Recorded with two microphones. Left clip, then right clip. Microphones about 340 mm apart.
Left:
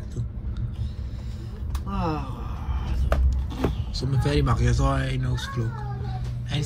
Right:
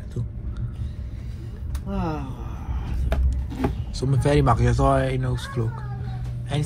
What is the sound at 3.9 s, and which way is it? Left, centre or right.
Speech, centre.